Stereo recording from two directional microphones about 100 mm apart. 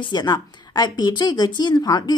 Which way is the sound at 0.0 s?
45° left (ahead or behind).